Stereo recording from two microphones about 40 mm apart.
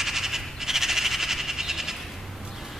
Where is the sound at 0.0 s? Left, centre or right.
Centre.